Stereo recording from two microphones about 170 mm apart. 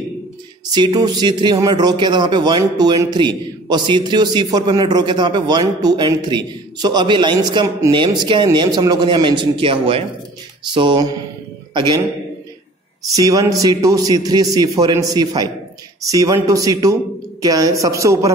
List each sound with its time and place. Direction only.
0.7 s a man's voice: 25° right (ahead or behind)
13.1 s speech: 20° right (ahead or behind)